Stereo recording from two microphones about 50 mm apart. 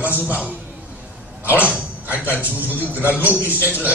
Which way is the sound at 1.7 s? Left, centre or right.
Right.